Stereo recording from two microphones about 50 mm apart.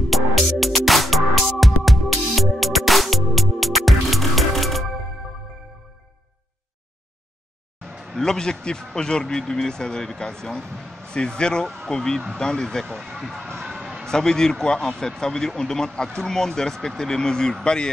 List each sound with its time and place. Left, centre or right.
0.1 s music: centre
7.8 s a sound: centre
8.1 s speech: centre
12.9 s speech: centre
13.7 s a sound: centre
14.0 s speech: centre